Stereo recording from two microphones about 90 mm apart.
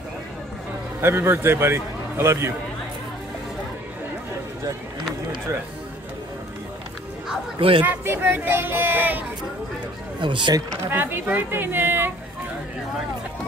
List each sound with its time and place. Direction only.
1.0 s a man's voice: 25° right (ahead or behind)
7.8 s a man's voice: 25° right (ahead or behind)
10.2 s speech: 60° right (ahead or behind)
10.9 s a man's voice: 25° right (ahead or behind)